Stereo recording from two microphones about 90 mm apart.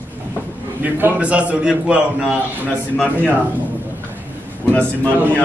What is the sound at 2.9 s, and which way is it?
Speech, 15° left (ahead or behind).